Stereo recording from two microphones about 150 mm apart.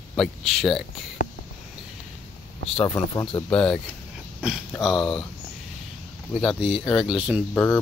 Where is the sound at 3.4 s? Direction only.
5° left (ahead or behind).